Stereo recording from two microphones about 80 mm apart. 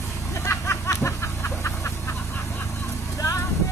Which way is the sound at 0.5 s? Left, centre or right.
Left.